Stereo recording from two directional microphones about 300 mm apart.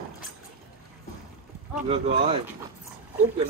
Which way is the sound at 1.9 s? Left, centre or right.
Centre.